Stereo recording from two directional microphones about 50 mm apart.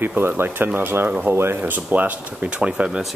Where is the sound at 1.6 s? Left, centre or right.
Right.